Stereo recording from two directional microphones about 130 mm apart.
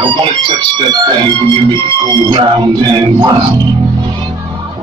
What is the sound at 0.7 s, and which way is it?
Music, 35° right (ahead or behind).